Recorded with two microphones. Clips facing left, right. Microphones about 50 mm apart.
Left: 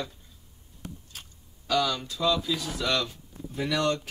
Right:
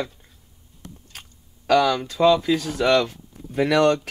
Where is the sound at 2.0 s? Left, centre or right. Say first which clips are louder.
Right 9 dB; right.